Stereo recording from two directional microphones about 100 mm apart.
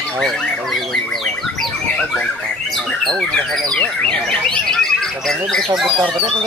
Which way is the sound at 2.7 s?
5° left (ahead or behind).